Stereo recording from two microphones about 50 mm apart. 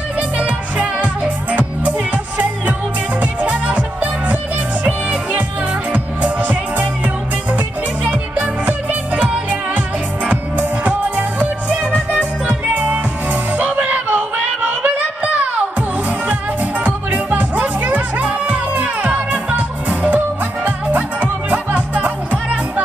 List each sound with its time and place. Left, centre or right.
0.4 s music: right
3.2 s music: right
14.4 s a sound: right
16.8 s music: right